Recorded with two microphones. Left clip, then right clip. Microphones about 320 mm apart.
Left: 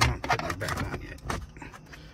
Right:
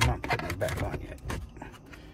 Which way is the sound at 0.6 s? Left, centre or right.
Centre.